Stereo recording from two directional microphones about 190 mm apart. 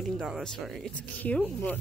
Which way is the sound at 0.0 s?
Centre (ahead or behind).